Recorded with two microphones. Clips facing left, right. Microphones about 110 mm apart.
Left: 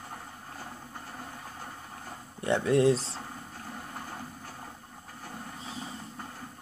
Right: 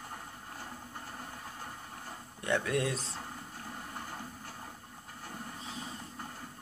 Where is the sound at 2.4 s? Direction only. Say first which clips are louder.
Left 8 dB; 30° left (ahead or behind).